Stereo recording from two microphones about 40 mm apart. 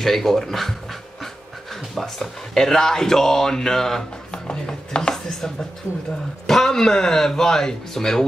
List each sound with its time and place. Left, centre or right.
0.0 s speech: centre
2.0 s speech: centre
4.3 s chopping: left
5.1 s chopping: centre
6.4 s speech: centre